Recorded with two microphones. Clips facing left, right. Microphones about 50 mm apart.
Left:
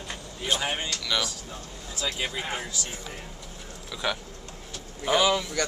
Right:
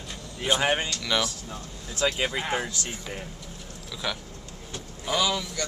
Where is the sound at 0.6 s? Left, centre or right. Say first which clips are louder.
Right 5 dB; right.